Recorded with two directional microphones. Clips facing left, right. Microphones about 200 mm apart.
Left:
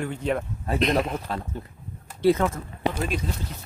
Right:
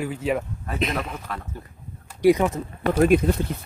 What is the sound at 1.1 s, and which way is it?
Speech, 30° left (ahead or behind).